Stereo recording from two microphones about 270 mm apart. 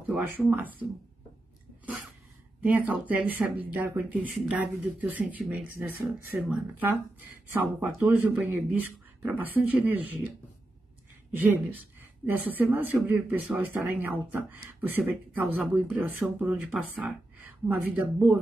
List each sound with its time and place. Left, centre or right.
0.0 s speech: centre
2.6 s speech: centre
12.3 s speech: centre